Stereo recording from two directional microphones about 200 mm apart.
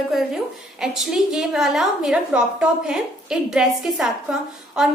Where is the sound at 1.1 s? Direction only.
Centre (ahead or behind).